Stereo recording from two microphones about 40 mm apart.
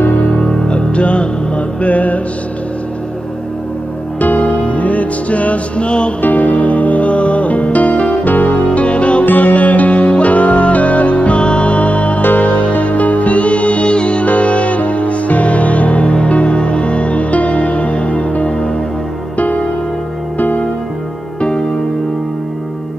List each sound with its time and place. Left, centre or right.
0.7 s music: left
4.2 s music: left
6.2 s music: left
9.2 s music: left
12.2 s music: left
12.4 s music: left
21.4 s music: left